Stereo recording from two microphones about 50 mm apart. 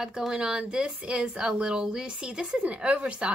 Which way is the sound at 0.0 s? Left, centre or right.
Centre.